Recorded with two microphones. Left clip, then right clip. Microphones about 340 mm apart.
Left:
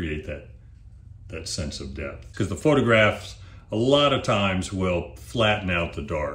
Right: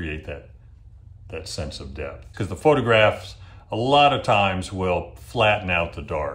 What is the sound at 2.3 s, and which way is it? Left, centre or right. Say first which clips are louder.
Speech: right 3 dB; centre.